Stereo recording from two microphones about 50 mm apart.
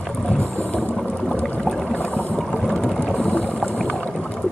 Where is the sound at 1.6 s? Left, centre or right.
Centre.